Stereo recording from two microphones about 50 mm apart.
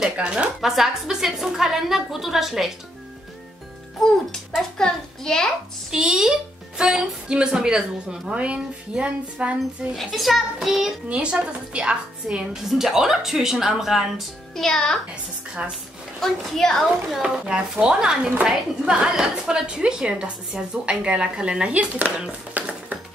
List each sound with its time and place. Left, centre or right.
0.2 s a woman's voice: right
0.6 s a woman's voice: centre
4.7 s a child's voice: centre
5.9 s a woman's voice: centre
9.9 s a child's voice: centre
11.1 s a woman's voice: right
12.6 s a woman's voice: centre
14.5 s a child's voice: centre
16.2 s a child's voice: centre
17.2 s a woman's voice: centre
21.7 s speech: right
22.5 s music: right